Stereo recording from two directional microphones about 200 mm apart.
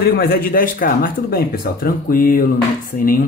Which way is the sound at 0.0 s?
45° left (ahead or behind).